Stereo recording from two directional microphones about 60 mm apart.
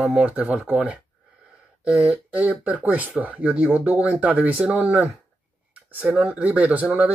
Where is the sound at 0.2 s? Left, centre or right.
Right.